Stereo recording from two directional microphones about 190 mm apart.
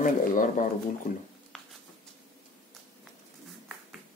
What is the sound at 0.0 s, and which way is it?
Speech, 45° left (ahead or behind).